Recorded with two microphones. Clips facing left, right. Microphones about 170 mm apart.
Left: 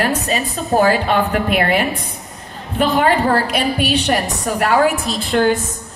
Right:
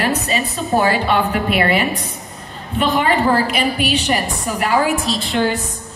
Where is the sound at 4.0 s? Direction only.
65° left (ahead or behind).